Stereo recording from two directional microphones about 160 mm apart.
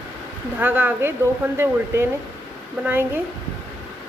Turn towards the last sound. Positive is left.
turn(degrees=-15)  # may be behind; listen again after turning